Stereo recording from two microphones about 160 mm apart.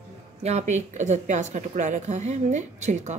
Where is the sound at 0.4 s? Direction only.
45° right (ahead or behind).